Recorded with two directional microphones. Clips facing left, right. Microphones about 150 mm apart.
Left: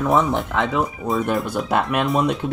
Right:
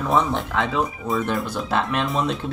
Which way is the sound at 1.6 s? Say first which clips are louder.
Left 3 dB; 10° left (ahead or behind).